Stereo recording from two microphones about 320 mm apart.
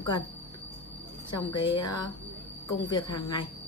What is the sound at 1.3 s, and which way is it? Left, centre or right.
A woman's voice, centre.